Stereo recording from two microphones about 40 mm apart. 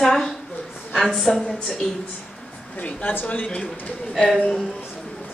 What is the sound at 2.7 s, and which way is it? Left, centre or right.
Speech, left.